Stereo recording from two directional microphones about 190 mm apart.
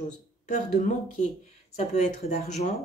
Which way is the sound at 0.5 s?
40° left (ahead or behind).